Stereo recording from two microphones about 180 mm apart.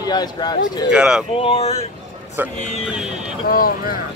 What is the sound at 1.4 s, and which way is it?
Speech, 35° left (ahead or behind).